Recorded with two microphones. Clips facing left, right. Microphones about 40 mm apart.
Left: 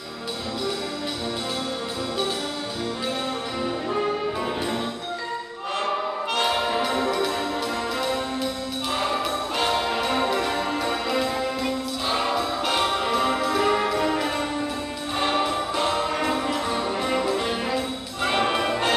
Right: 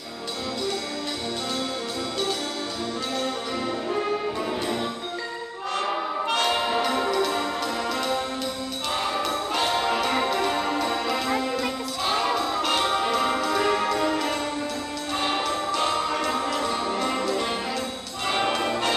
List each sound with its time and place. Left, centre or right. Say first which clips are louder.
3.6 s music: left 2 dB; centre
6.3 s music: left 1 dB; centre
12.3 s music: even; centre